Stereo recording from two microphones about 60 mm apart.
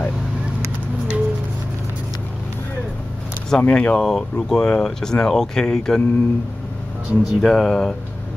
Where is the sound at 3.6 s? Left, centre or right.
Left.